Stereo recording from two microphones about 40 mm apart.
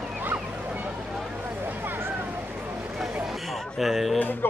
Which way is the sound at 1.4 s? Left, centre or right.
Right.